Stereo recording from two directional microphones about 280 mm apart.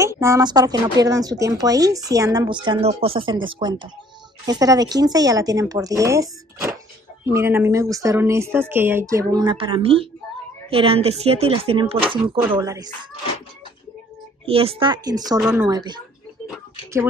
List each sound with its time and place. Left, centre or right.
0.0 s speech: centre
14.4 s speech: centre
16.4 s a sound: centre